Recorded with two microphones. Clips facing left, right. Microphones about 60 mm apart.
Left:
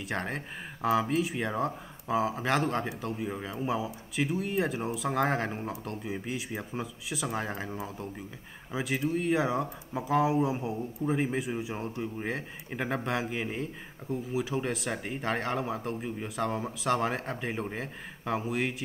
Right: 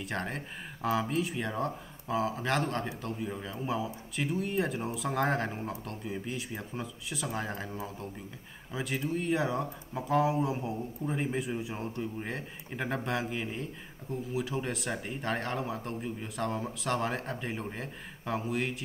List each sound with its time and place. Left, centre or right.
0.0 s speech: centre
8.7 s speech: centre